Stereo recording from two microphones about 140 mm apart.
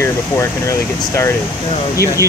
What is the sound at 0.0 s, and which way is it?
Speech, 20° left (ahead or behind).